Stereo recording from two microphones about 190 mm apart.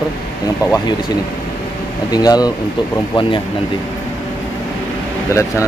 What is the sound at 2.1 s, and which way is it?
Speech, 20° left (ahead or behind).